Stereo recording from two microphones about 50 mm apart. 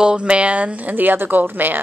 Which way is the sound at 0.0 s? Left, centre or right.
Centre.